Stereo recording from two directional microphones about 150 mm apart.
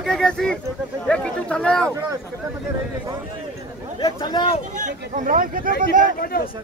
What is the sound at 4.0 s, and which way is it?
Speech, 30° left (ahead or behind).